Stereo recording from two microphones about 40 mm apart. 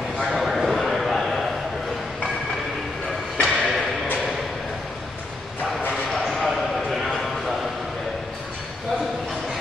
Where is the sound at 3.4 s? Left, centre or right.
Centre.